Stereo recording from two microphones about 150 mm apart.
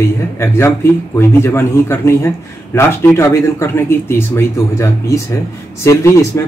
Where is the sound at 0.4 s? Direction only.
15° left (ahead or behind).